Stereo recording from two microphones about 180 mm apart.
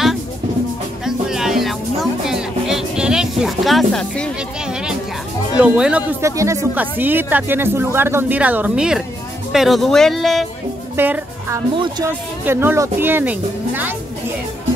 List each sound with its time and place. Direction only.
1.0 s music: centre (ahead or behind)
5.6 s speech: 5° right (ahead or behind)
11.0 s speech: 10° right (ahead or behind)
11.7 s speech: 25° right (ahead or behind)
12.4 s speech: 15° right (ahead or behind)